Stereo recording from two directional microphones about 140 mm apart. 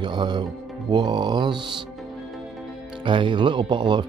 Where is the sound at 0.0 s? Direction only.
35° right (ahead or behind).